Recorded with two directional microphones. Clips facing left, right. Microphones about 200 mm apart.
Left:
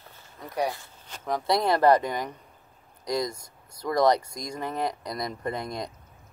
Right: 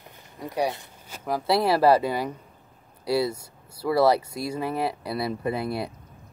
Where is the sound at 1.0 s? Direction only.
5° right (ahead or behind).